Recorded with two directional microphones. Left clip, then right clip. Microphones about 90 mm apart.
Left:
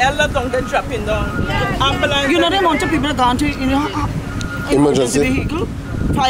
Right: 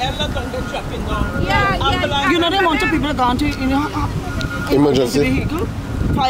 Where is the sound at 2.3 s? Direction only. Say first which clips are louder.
Even; centre (ahead or behind).